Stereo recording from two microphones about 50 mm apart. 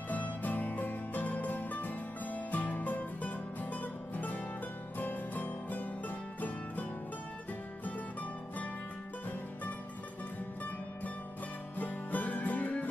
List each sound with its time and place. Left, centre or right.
0.1 s music: left
11.8 s music: left